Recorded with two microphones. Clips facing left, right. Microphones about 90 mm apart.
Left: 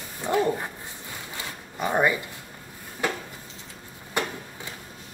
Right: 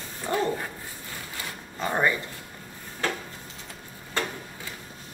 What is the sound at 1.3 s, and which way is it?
Zipper, 15° left (ahead or behind).